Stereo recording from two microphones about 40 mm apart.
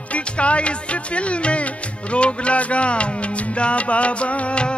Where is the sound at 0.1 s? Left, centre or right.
Left.